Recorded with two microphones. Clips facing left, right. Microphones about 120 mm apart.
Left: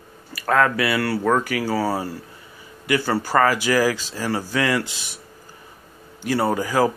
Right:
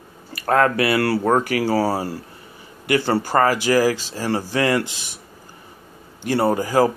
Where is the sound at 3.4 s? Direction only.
45° right (ahead or behind).